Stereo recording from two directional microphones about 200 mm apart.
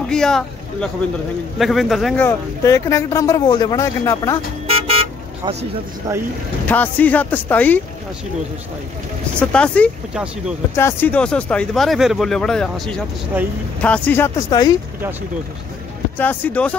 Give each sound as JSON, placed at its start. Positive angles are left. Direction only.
{"t": 0.0, "sound": "speech", "side_deg": 5}
{"t": 2.2, "sound": "speech", "side_deg": 15}
{"t": 4.6, "sound": "vehicle", "side_deg": -30}
{"t": 6.7, "sound": "speech", "side_deg": 10}
{"t": 9.4, "sound": "speech", "side_deg": 5}
{"t": 10.1, "sound": "speech", "side_deg": -5}
{"t": 10.8, "sound": "speech", "side_deg": 10}
{"t": 16.2, "sound": "speech", "side_deg": 10}